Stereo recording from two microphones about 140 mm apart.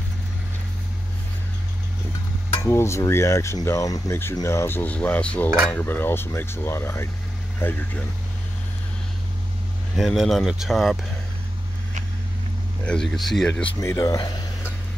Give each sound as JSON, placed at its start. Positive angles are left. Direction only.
{"t": 2.6, "sound": "speech", "side_deg": 20}
{"t": 9.9, "sound": "speech", "side_deg": 0}
{"t": 12.8, "sound": "speech", "side_deg": 5}
{"t": 13.7, "sound": "speech", "side_deg": 25}